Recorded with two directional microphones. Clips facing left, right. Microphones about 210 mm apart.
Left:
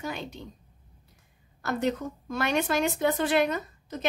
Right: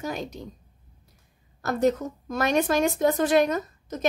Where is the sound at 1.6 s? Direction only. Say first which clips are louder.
Right 5 dB; 40° right (ahead or behind).